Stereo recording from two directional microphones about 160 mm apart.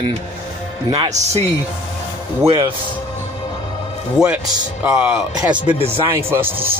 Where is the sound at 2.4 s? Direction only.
30° right (ahead or behind).